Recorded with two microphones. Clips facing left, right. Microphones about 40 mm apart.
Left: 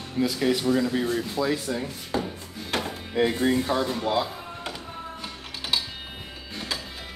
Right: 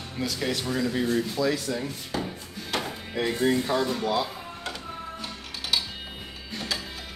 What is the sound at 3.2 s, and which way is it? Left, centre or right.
Speech, centre.